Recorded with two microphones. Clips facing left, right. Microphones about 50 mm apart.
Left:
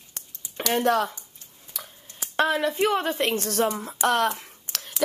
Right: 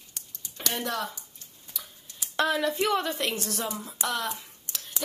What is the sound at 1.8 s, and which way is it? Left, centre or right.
Speech, left.